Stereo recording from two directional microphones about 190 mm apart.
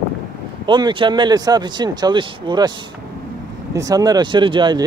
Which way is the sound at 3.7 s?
20° right (ahead or behind).